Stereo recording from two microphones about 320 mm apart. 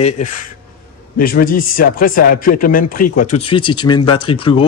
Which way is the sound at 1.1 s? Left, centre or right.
Left.